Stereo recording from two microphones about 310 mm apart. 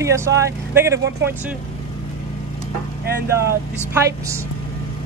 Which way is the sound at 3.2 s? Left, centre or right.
Centre.